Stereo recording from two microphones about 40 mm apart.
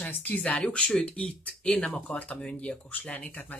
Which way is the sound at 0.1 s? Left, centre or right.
Left.